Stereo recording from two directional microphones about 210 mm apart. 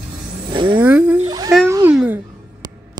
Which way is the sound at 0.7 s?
5° right (ahead or behind).